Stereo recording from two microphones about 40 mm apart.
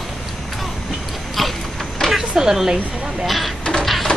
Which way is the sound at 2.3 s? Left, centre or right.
Centre.